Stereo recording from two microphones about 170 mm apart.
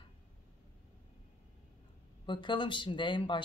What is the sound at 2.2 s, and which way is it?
Speech, 30° left (ahead or behind).